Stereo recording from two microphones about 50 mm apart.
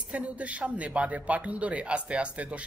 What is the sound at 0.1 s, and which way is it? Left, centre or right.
Speech, right.